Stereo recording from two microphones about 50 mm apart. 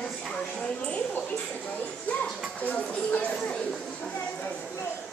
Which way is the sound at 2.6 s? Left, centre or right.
Left.